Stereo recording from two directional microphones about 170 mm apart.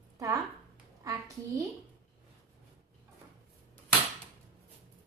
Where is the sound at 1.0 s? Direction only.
20° right (ahead or behind).